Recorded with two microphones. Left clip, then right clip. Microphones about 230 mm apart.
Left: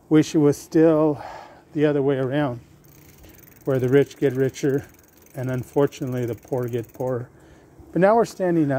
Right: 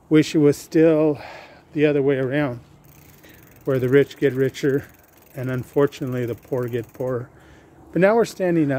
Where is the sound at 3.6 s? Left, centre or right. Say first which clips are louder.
Right 1 dB; centre.